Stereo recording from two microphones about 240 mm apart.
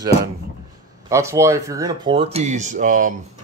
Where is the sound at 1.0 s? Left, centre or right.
Centre.